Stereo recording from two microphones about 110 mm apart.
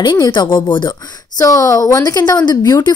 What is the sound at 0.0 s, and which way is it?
Speech, 40° left (ahead or behind).